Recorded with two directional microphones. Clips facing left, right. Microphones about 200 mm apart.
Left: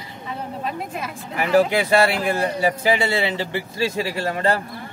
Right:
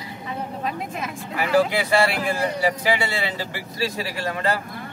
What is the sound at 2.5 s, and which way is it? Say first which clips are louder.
Speech: left 2 dB; 25° left (ahead or behind).